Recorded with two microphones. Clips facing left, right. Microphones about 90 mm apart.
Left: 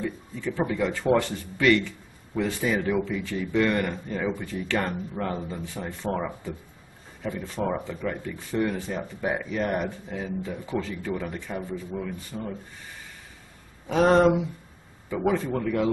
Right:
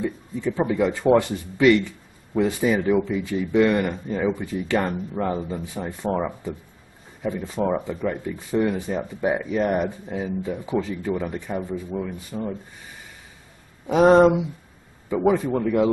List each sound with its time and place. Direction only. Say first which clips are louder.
0.0 s speech: right 5 dB; 15° right (ahead or behind)
13.8 s speech: right 5 dB; 15° right (ahead or behind)